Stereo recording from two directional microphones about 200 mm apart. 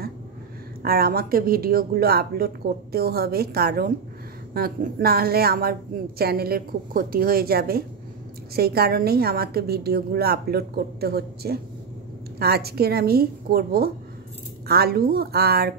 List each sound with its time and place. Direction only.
0.8 s a woman's voice: 50° right (ahead or behind)